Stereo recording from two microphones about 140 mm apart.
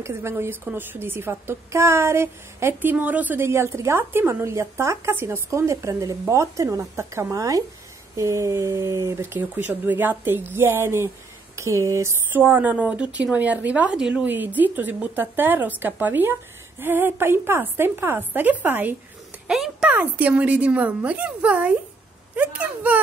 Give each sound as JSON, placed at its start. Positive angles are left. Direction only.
{"t": 0.0, "sound": "a woman's voice", "side_deg": -20}